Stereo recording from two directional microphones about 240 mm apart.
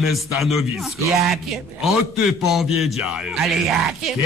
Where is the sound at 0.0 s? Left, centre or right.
Centre.